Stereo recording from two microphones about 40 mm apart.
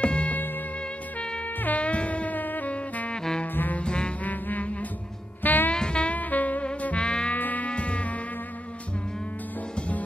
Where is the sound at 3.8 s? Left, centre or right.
Left.